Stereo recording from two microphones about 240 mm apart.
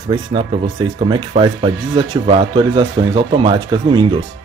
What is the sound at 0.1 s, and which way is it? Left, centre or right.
Speech, centre.